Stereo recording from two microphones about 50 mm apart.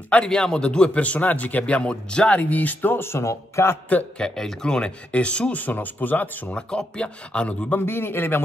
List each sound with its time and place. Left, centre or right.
0.1 s a man's voice: centre
2.5 s speech: left
4.2 s a man's voice: centre
5.5 s speech: left
6.5 s a man's voice: centre
7.8 s a man's voice: left